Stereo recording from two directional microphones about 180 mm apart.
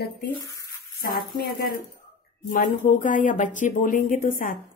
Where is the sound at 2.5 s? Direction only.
50° left (ahead or behind).